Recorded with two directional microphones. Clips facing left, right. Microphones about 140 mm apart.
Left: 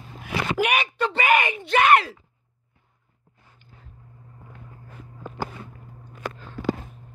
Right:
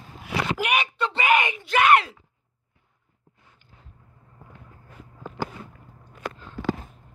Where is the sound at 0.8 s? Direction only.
45° left (ahead or behind).